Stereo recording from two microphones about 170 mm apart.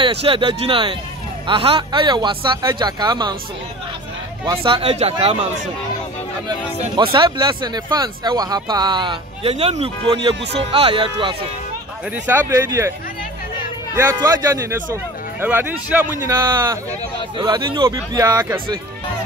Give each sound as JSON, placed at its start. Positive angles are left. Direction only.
{"t": 0.0, "sound": "speech", "side_deg": -30}
{"t": 4.5, "sound": "speech", "side_deg": -30}
{"t": 7.0, "sound": "speech", "side_deg": -30}
{"t": 12.3, "sound": "a man's voice", "side_deg": -15}
{"t": 13.9, "sound": "a man's voice", "side_deg": -15}
{"t": 17.4, "sound": "speech", "side_deg": -25}